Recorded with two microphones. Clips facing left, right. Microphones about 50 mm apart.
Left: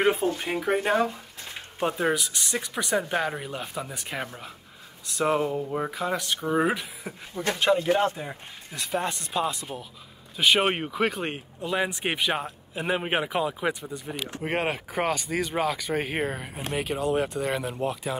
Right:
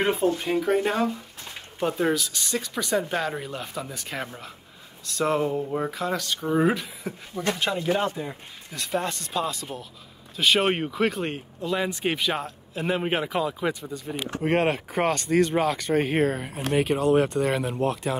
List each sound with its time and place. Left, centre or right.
0.0 s speech: left
2.0 s speech: centre
5.7 s speech: centre
6.0 s speech: left
10.7 s speech: centre